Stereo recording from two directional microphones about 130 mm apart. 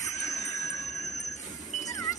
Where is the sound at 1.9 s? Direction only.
25° left (ahead or behind).